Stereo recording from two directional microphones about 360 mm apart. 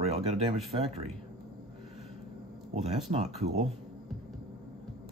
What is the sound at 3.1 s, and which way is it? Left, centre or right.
Speech, centre.